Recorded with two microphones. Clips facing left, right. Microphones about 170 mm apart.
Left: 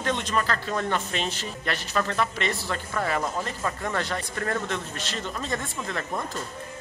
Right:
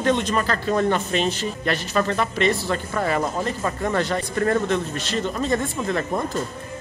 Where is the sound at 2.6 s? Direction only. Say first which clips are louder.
Right 5 dB; 20° right (ahead or behind).